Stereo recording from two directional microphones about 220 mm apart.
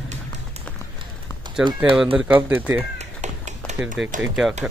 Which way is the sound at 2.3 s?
10° right (ahead or behind).